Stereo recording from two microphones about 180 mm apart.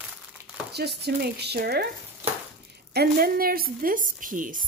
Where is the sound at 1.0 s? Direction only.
65° right (ahead or behind).